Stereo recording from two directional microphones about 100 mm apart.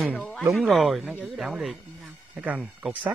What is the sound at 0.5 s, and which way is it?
Speech, centre (ahead or behind).